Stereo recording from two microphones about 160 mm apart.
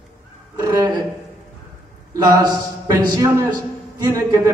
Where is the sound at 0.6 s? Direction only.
20° right (ahead or behind).